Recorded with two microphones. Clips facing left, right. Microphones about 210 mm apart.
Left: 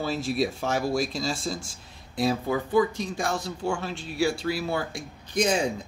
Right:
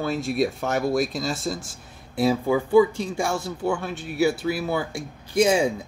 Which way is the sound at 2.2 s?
10° right (ahead or behind).